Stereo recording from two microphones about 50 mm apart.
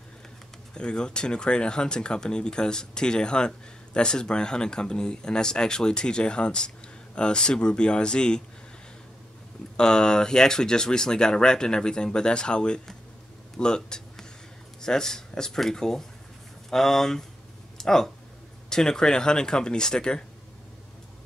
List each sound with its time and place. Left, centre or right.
0.7 s speech: centre
9.8 s speech: centre